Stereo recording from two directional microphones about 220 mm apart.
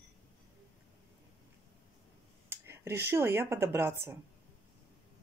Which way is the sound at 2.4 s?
10° right (ahead or behind).